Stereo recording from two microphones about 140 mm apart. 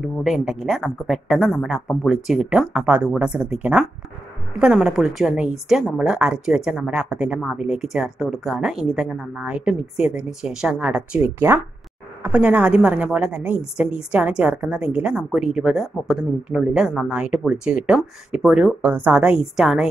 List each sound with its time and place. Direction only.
0.0 s a woman's voice: 5° right (ahead or behind)
4.6 s a woman's voice: 5° right (ahead or behind)